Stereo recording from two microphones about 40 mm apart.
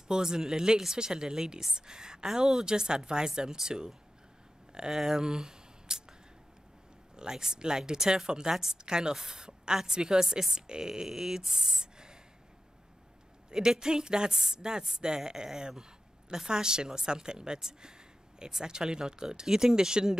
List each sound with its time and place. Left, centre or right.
0.1 s speech: centre
7.2 s speech: centre
13.5 s speech: centre